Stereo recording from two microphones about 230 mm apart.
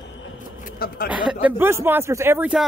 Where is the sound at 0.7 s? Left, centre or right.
Left.